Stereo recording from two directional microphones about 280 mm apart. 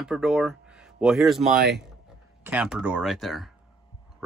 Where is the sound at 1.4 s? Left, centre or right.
Right.